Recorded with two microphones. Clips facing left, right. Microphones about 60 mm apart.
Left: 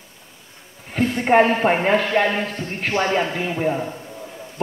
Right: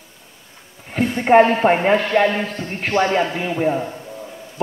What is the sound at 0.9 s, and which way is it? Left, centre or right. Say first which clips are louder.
A man's voice: right 3 dB; centre.